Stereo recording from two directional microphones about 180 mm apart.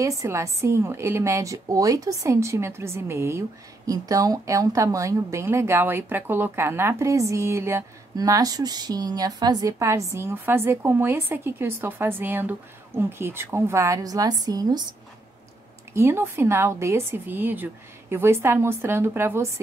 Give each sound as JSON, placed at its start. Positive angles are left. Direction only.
{"t": 0.0, "sound": "a woman's voice", "side_deg": -15}
{"t": 15.9, "sound": "a woman's voice", "side_deg": -15}